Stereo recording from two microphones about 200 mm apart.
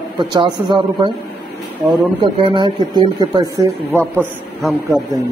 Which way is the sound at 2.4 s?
25° right (ahead or behind).